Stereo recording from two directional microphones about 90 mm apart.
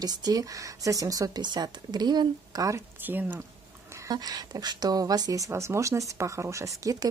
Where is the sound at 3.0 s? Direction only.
20° right (ahead or behind).